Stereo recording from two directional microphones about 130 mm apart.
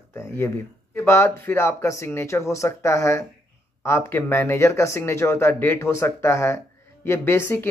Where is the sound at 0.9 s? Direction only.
20° left (ahead or behind).